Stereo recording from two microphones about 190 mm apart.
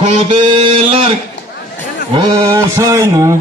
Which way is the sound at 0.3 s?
25° right (ahead or behind).